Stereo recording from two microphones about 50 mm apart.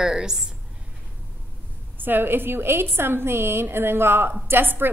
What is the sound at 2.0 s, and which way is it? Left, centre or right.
A woman's voice, right.